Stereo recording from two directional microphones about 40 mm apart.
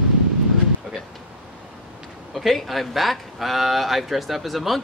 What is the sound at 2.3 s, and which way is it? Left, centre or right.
Speech, centre.